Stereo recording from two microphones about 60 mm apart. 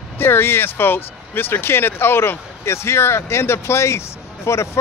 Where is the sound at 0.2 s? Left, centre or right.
Left.